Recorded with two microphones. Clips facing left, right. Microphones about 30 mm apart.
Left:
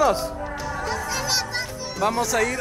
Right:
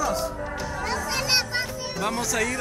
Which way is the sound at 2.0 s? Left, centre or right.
Centre.